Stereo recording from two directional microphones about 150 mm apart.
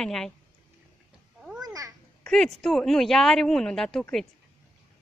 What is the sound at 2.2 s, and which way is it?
Speech, centre (ahead or behind).